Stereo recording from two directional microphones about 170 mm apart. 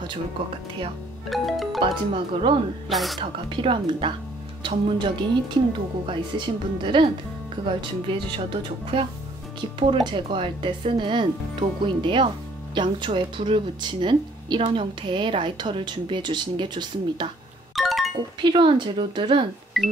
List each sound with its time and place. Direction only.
1.3 s speech: centre (ahead or behind)
2.9 s speech: centre (ahead or behind)
3.2 s speech: 30° right (ahead or behind)
17.7 s music: centre (ahead or behind)
18.4 s speech: 30° right (ahead or behind)
19.7 s music: centre (ahead or behind)